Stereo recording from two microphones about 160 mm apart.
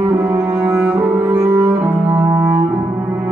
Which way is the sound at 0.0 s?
15° right (ahead or behind).